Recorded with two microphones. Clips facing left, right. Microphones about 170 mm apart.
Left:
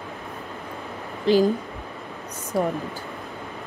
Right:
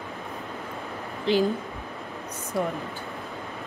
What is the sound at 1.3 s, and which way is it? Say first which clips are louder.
Speech: left 4 dB; 40° left (ahead or behind).